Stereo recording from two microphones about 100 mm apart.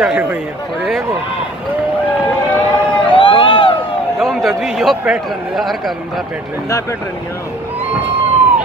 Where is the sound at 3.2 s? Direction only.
55° left (ahead or behind).